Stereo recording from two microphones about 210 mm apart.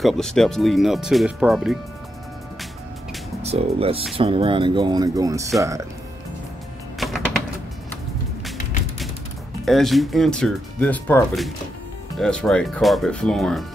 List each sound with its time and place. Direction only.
0.0 s speech: centre (ahead or behind)
3.4 s speech: 30° right (ahead or behind)
7.0 s music: centre (ahead or behind)
9.7 s speech: centre (ahead or behind)